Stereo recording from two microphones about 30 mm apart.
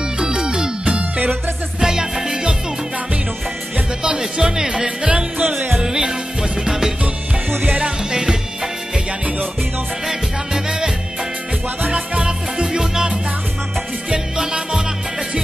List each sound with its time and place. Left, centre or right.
0.2 s music: right
0.9 s music: right
1.8 s music: centre
4.2 s music: centre
10.0 s music: right
11.9 s music: right
14.1 s music: right